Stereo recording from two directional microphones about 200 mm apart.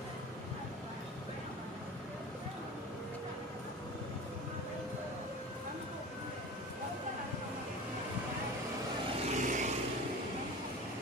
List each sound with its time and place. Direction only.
9.2 s vehicle: 35° right (ahead or behind)